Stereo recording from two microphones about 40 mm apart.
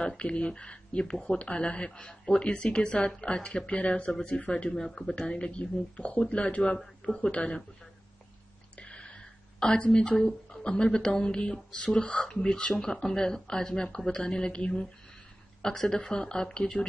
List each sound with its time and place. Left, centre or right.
0.2 s speech: left
4.7 s speech: centre
8.7 s a sound: left
9.8 s speech: left